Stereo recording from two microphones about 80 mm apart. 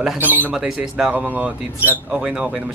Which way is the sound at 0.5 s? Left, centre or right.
Centre.